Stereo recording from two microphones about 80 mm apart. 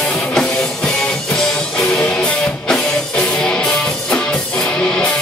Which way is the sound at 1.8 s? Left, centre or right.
Centre.